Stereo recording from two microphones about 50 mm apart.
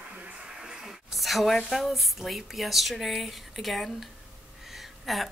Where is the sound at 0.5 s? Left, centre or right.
Centre.